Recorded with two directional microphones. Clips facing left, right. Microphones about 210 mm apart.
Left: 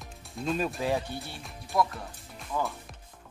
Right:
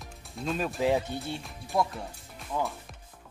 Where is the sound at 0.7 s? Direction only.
15° right (ahead or behind).